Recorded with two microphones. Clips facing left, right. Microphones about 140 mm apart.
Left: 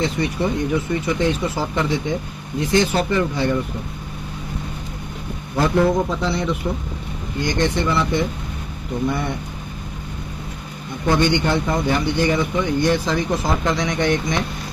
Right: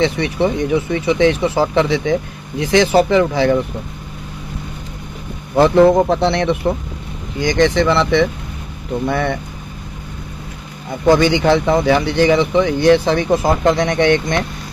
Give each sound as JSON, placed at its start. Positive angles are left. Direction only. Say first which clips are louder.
{"t": 0.0, "sound": "speech", "louder": "right 5 dB", "side_deg": -75}
{"t": 5.6, "sound": "speech", "louder": "right 7 dB", "side_deg": -65}
{"t": 7.3, "sound": "speech", "louder": "right 7 dB", "side_deg": -90}
{"t": 10.9, "sound": "speech", "louder": "right 6 dB", "side_deg": -90}
{"t": 13.4, "sound": "speech", "louder": "right 6 dB", "side_deg": -60}